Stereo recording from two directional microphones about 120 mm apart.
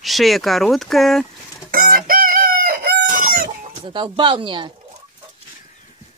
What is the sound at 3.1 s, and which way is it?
Chicken, 90° right.